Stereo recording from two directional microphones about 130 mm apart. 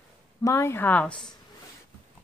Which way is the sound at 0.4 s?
20° left (ahead or behind).